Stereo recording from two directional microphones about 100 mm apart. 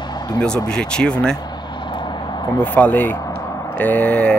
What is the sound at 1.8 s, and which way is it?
Vehicle, 50° left (ahead or behind).